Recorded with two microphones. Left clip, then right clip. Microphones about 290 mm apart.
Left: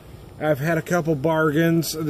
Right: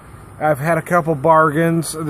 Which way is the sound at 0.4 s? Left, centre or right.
Centre.